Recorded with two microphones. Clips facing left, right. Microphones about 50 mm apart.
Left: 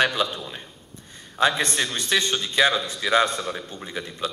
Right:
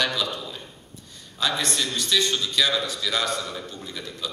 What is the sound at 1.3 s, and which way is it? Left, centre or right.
A man's voice, left.